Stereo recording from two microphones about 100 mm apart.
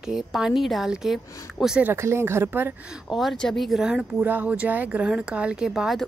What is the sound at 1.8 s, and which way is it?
Speech, 25° right (ahead or behind).